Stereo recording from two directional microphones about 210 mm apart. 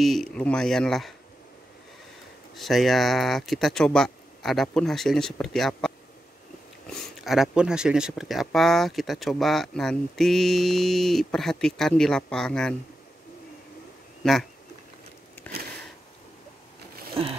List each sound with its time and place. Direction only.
0.0 s speech: centre (ahead or behind)
2.5 s speech: centre (ahead or behind)
14.2 s speech: 5° left (ahead or behind)
17.2 s a sound: 25° right (ahead or behind)